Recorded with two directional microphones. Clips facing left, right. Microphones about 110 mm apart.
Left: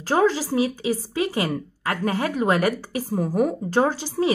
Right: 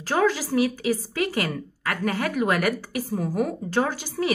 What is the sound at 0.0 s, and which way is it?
Speech, 30° left (ahead or behind).